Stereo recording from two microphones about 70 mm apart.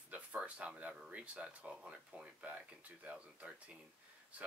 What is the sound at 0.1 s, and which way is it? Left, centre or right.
Speech, centre.